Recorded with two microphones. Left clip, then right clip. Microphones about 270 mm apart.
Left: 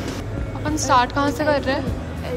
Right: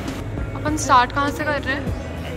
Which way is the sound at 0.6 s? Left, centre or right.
Centre.